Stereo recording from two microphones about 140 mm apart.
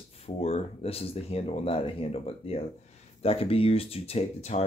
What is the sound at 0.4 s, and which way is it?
Speech, 50° left (ahead or behind).